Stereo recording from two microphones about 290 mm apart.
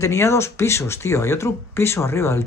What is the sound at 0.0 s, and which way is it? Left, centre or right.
Speech, centre.